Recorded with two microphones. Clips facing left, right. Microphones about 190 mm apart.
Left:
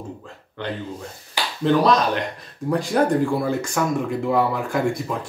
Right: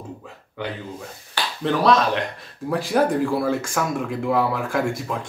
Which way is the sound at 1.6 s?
Centre (ahead or behind).